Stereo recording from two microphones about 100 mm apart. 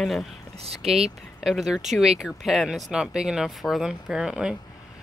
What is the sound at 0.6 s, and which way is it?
Speech, 90° right.